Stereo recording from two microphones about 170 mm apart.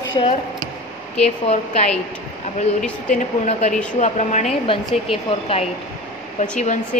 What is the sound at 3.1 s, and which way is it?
Speech, 45° left (ahead or behind).